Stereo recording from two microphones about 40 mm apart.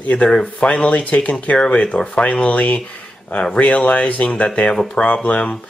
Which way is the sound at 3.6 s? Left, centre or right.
Left.